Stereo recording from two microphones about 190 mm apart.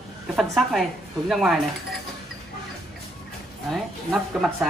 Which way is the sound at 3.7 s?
Centre (ahead or behind).